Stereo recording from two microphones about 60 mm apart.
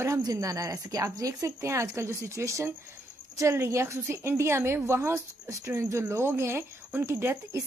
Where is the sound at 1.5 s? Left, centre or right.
Right.